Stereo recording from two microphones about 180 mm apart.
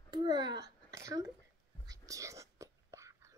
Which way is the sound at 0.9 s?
15° right (ahead or behind).